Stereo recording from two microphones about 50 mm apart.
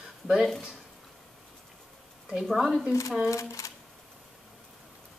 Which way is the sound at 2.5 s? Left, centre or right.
Centre.